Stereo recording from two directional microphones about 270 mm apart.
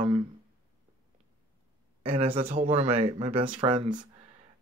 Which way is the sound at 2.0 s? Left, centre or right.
Right.